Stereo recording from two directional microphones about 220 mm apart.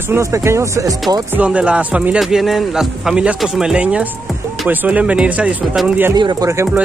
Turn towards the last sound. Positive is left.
turn(degrees=-15)  # may be behind; listen again after turning